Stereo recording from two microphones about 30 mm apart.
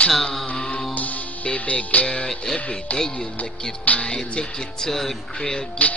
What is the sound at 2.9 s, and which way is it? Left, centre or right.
Music, left.